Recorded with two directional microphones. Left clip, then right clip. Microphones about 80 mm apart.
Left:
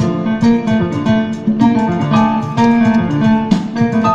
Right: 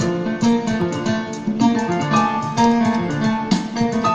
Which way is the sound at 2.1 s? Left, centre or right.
Left.